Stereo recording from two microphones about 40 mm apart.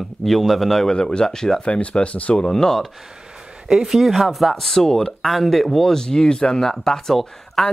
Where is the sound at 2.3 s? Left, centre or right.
Centre.